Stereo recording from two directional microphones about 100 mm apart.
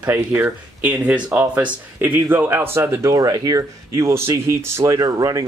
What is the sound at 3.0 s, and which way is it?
Speech, 35° right (ahead or behind).